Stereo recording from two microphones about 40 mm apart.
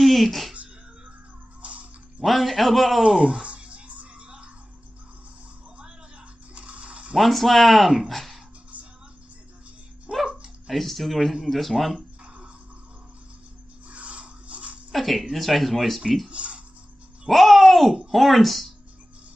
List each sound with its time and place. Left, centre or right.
0.0 s music: centre
1.6 s music: right
2.2 s a child's voice: centre
3.4 s music: right
6.5 s a sound: right
7.2 s a child's voice: centre
10.7 s a child's voice: centre
13.8 s rub: right
14.9 s a child's voice: centre
16.3 s speech: right
17.3 s a child's voice: centre